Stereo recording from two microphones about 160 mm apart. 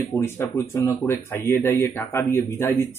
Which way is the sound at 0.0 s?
15° left (ahead or behind).